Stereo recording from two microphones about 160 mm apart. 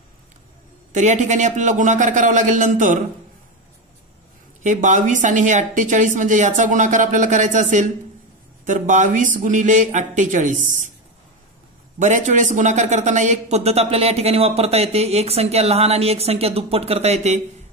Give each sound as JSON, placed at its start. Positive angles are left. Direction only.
{"t": 0.9, "sound": "a woman's voice", "side_deg": -50}
{"t": 4.6, "sound": "a woman's voice", "side_deg": -50}
{"t": 12.0, "sound": "a man's voice", "side_deg": -50}